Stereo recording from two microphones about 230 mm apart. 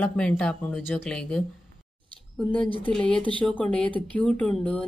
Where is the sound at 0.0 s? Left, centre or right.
Centre.